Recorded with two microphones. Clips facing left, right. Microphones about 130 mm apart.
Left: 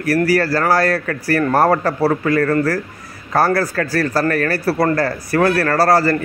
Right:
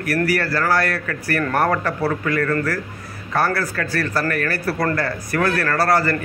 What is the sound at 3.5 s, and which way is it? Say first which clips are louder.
Speech: left 5 dB; 40° left (ahead or behind).